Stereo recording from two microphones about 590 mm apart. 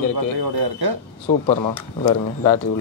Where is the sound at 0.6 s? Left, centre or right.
Right.